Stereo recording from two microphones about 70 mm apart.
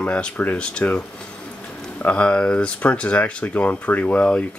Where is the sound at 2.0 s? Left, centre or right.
Centre.